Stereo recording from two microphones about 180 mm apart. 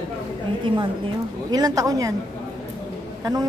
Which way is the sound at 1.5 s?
20° right (ahead or behind).